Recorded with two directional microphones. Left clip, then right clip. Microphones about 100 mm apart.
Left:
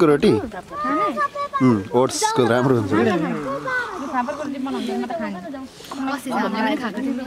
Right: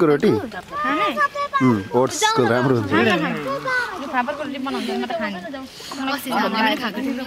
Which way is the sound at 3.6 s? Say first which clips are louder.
Right 3 dB; 35° right (ahead or behind).